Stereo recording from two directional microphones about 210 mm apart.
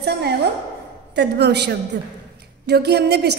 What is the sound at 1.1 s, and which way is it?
A woman's voice, 55° right (ahead or behind).